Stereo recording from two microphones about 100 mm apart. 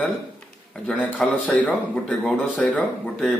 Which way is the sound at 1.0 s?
15° left (ahead or behind).